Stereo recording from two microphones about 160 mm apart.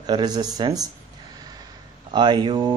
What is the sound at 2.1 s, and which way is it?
Speech, 25° right (ahead or behind).